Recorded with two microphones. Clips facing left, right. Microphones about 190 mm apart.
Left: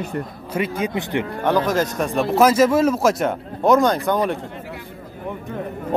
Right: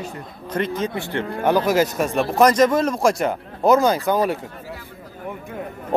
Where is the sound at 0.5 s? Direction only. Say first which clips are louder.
Left 1 dB; 10° left (ahead or behind).